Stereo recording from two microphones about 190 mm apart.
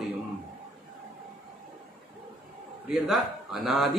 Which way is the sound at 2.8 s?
5° right (ahead or behind).